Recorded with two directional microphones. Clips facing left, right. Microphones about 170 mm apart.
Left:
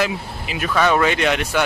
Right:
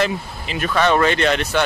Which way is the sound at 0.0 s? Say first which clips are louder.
Right 1 dB; 5° left (ahead or behind).